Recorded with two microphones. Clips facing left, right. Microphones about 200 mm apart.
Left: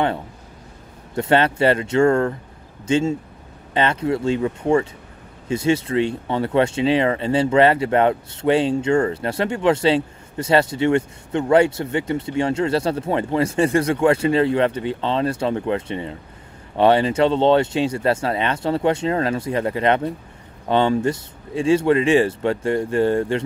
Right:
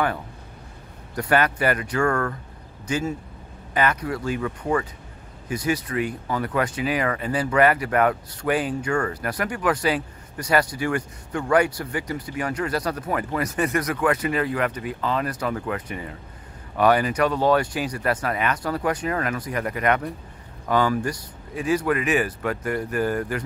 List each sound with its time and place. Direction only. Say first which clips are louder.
1.1 s speech: left 4 dB; 25° left (ahead or behind)